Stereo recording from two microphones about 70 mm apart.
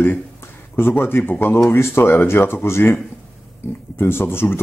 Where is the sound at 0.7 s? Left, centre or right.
Left.